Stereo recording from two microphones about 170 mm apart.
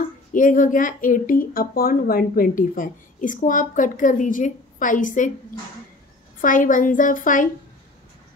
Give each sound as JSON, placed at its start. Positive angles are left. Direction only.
{"t": 0.3, "sound": "speech", "side_deg": 50}
{"t": 6.4, "sound": "speech", "side_deg": 50}